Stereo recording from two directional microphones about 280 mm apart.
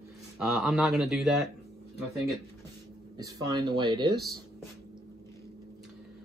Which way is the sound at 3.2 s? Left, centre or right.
Centre.